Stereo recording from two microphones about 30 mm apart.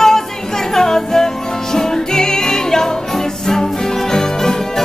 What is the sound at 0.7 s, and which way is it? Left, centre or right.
Music, centre.